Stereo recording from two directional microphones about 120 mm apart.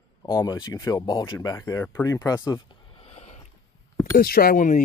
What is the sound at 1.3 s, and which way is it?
Speech, 25° left (ahead or behind).